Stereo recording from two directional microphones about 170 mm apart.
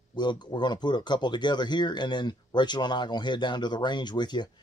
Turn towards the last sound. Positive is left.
turn(degrees=25)  # may be behind; listen again after turning